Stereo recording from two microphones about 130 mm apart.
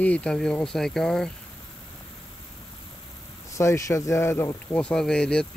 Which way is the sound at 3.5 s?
25° left (ahead or behind).